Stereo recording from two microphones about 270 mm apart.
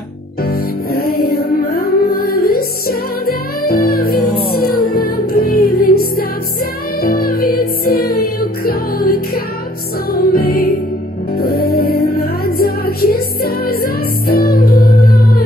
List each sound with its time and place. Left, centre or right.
0.5 s music: left